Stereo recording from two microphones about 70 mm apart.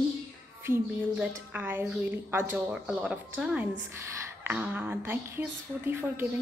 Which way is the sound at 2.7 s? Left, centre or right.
Centre.